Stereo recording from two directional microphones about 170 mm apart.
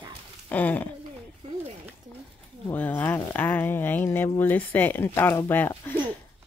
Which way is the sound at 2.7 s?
10° left (ahead or behind).